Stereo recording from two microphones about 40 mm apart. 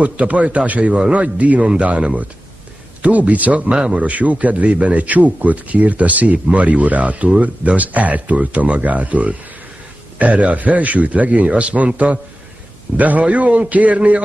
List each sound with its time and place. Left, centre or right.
0.0 s speech: right
3.7 s a man's voice: right
4.0 s speech: right